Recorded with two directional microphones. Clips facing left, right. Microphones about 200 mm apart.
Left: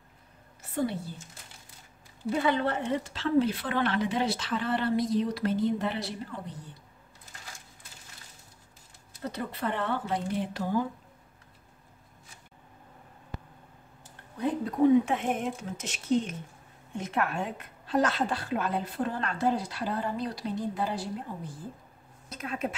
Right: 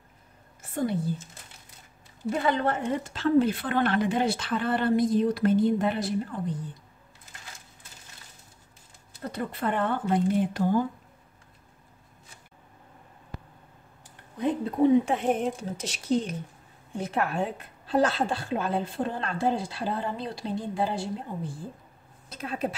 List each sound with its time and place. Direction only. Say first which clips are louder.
0.6 s a sound: right 1 dB; 45° right (ahead or behind)
2.4 s a woman's voice: right 2 dB; 50° right (ahead or behind)
9.3 s a woman's voice: right 4 dB; 50° right (ahead or behind)
14.4 s a woman's voice: right 1 dB; 30° right (ahead or behind)